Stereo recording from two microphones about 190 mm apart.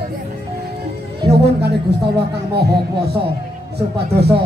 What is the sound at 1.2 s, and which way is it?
Speech, 60° right (ahead or behind).